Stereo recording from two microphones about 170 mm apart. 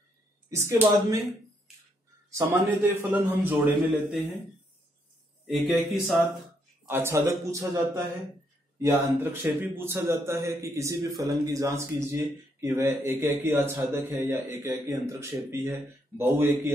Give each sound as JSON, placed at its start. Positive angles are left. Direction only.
{"t": 0.5, "sound": "a man's voice", "side_deg": -15}
{"t": 2.3, "sound": "a man's voice", "side_deg": -15}
{"t": 6.9, "sound": "a man's voice", "side_deg": -15}